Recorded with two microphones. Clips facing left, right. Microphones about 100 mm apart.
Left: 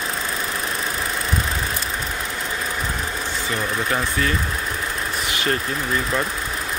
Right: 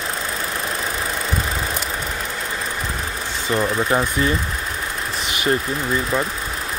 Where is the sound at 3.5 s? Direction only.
25° right (ahead or behind).